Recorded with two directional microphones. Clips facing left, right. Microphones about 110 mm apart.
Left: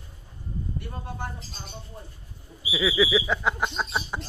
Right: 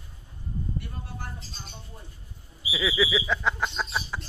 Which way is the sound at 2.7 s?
5° left (ahead or behind).